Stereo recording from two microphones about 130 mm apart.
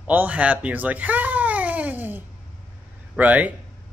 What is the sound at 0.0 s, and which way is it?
Speech, 10° right (ahead or behind).